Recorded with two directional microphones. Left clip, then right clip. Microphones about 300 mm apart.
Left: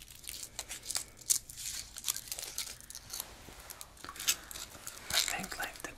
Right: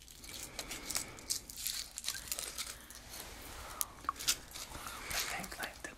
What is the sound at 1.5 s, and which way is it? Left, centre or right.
Crumpling, centre.